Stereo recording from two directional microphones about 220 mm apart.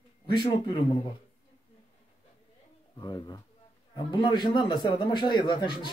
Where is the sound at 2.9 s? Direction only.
20° left (ahead or behind).